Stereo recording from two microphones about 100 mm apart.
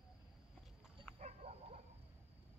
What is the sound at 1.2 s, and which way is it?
Dog, 90° right.